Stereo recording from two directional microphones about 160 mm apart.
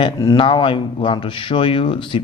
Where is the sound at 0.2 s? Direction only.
25° left (ahead or behind).